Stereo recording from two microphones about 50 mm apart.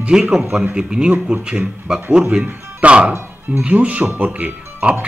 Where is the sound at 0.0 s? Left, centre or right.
Centre.